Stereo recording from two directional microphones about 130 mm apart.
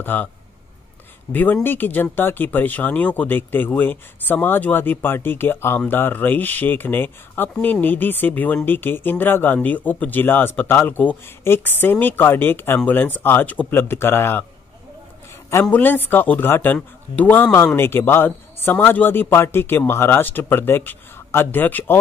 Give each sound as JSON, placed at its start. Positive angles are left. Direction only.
{"t": 0.0, "sound": "speech", "side_deg": 15}
{"t": 1.3, "sound": "speech", "side_deg": 15}
{"t": 15.6, "sound": "speech", "side_deg": 15}